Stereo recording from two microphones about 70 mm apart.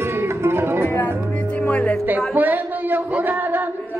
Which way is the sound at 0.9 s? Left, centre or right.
Left.